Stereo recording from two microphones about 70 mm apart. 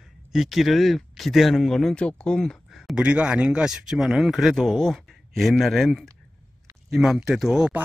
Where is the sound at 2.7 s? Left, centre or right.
Centre.